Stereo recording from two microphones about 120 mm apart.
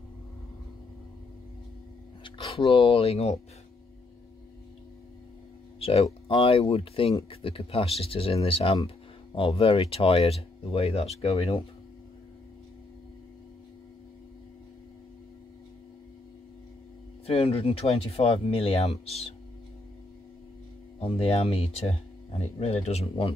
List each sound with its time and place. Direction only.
2.2 s speech: 50° left (ahead or behind)
5.8 s speech: 55° left (ahead or behind)
17.3 s speech: 55° left (ahead or behind)
21.0 s speech: 55° left (ahead or behind)